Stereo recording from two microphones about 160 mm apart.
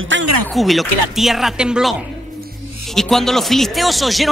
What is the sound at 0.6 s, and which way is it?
Speech, centre (ahead or behind).